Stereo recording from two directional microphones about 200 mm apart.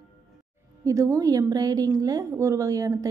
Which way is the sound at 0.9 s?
15° right (ahead or behind).